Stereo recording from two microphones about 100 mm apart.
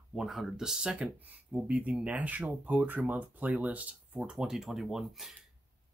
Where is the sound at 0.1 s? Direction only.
5° right (ahead or behind).